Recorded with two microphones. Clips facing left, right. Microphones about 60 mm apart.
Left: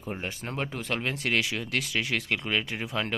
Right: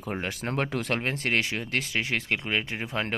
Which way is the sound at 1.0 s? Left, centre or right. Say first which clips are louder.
Right 1 dB; right.